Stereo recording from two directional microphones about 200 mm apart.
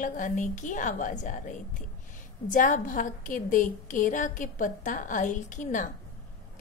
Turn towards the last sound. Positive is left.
turn(degrees=40)  # may be behind; listen again after turning